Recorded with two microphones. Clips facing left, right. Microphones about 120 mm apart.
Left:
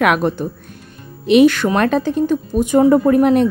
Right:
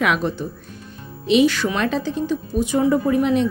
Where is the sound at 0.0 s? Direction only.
55° left (ahead or behind).